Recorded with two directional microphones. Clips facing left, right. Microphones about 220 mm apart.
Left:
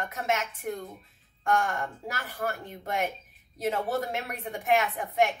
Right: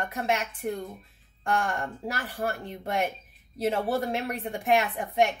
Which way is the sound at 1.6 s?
30° right (ahead or behind).